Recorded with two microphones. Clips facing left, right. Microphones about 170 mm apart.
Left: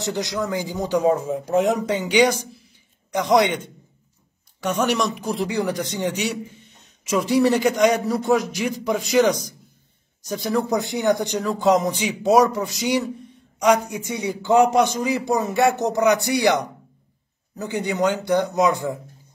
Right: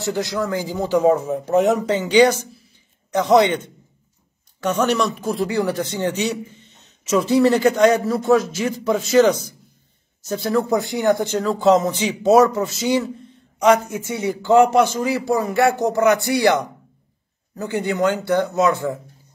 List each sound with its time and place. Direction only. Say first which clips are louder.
0.0 s a man's voice: right 2 dB; 20° left (ahead or behind)